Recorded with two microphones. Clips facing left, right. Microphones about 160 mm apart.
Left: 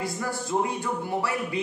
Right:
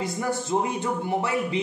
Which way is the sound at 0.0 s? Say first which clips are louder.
Right 3 dB; 20° right (ahead or behind).